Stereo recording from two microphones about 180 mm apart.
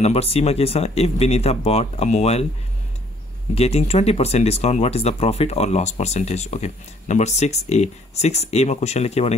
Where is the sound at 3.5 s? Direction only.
35° left (ahead or behind).